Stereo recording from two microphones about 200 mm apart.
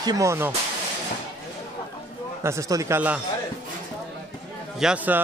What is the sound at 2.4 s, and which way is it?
Speech, 15° right (ahead or behind).